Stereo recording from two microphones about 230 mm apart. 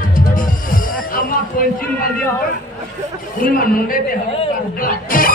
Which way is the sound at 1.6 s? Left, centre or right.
Left.